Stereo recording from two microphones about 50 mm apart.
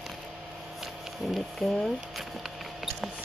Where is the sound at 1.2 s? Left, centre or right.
Centre.